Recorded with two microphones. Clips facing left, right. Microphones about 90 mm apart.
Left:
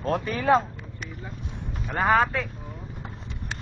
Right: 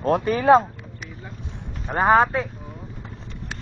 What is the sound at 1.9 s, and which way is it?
Speech, 25° right (ahead or behind).